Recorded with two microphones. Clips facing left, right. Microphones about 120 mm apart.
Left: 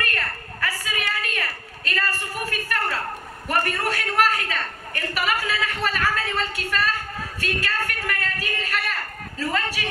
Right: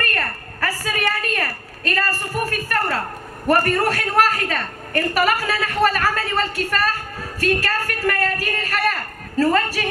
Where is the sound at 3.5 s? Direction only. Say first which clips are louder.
Right 7 dB; 50° right (ahead or behind).